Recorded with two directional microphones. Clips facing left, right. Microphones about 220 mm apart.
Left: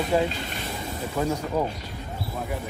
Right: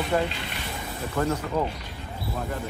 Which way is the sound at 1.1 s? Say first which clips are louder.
Even; 10° left (ahead or behind).